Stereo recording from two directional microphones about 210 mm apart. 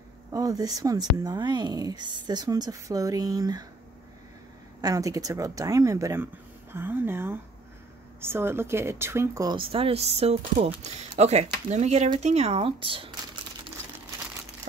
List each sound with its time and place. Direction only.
0.3 s speech: 15° right (ahead or behind)
4.8 s speech: 15° right (ahead or behind)